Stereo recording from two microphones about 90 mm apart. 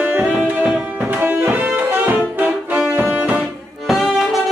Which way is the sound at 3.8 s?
Centre (ahead or behind).